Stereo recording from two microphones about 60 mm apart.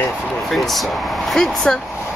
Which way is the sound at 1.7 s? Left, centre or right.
Centre.